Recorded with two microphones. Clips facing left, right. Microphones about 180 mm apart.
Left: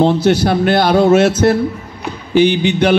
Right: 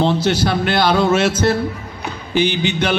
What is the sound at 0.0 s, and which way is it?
A man's voice, 50° left (ahead or behind).